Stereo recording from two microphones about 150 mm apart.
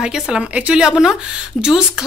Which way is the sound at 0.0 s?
5° right (ahead or behind).